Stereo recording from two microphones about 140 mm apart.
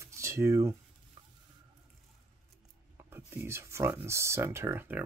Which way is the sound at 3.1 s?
20° right (ahead or behind).